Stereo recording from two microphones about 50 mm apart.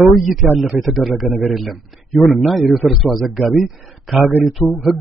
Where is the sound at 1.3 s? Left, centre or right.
Right.